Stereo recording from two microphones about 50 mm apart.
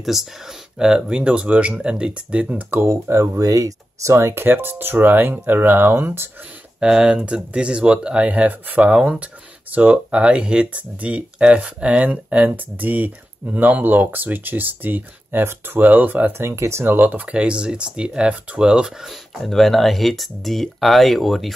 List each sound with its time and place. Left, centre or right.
0.0 s speech: centre
0.7 s speech: centre
2.8 s speech: right
4.5 s speech: right
6.8 s speech: centre; by 16.8 s right
16.8 s speech: right
17.3 s speech: right
19.0 s speech: centre